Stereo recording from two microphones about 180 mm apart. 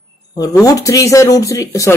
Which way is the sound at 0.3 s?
20° left (ahead or behind).